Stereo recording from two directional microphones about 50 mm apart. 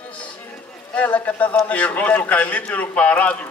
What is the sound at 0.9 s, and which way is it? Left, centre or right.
A man's voice, left.